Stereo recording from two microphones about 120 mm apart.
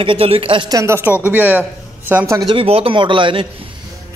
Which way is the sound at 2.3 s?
40° right (ahead or behind).